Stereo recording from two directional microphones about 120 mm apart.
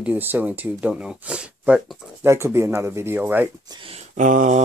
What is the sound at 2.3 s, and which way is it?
Speech, 20° right (ahead or behind).